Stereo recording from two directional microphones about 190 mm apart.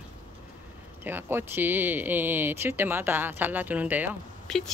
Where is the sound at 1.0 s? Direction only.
10° right (ahead or behind).